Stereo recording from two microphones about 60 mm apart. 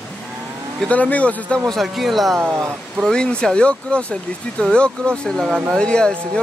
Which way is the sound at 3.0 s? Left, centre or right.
Centre.